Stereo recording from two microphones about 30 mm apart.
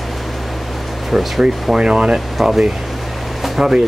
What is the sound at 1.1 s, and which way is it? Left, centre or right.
Speech, centre.